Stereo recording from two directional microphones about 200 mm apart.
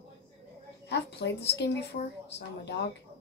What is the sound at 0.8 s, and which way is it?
Speech, 60° left (ahead or behind).